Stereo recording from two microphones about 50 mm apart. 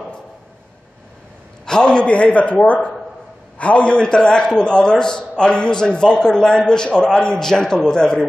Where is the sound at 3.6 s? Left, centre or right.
Left.